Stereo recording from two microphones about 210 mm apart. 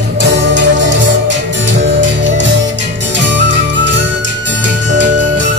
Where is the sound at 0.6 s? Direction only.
60° right (ahead or behind).